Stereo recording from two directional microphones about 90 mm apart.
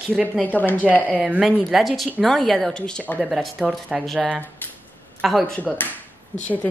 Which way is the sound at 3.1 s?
5° right (ahead or behind).